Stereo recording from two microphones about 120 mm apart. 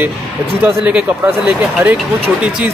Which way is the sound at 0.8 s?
10° right (ahead or behind).